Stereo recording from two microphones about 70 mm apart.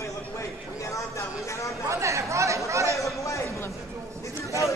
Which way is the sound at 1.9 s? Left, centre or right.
Right.